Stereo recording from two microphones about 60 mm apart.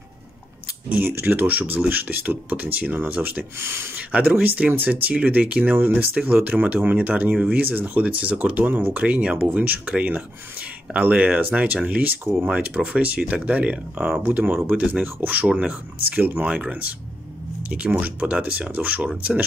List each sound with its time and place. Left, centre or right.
1.2 s speech: right
3.5 s speech: right
4.3 s speech: right
7.3 s speech: centre
7.6 s speech: right
9.0 s speech: centre
15.4 s speech: centre
15.7 s speech: right